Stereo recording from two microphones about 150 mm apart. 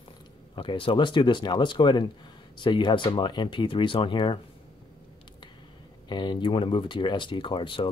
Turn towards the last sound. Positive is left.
turn(degrees=35)  # may be behind; listen again after turning